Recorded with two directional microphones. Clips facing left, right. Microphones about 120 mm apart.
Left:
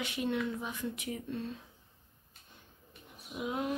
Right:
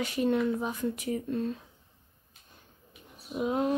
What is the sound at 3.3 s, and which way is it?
Speech, 35° right (ahead or behind).